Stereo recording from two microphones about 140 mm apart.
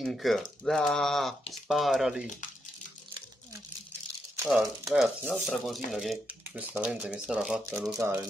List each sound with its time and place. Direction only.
0.0 s speech: centre (ahead or behind)
4.6 s speech: centre (ahead or behind)
7.7 s speech: 25° right (ahead or behind)